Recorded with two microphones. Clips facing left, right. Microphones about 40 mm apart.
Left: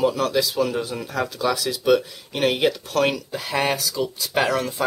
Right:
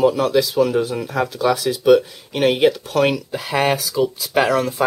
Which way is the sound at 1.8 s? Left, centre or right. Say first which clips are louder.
Right 6 dB; centre.